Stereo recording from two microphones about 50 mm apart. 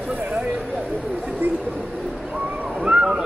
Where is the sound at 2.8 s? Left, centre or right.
Centre.